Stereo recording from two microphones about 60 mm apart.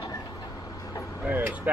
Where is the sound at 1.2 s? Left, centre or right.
Right.